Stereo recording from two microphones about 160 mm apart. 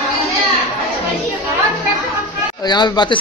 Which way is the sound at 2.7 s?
25° left (ahead or behind).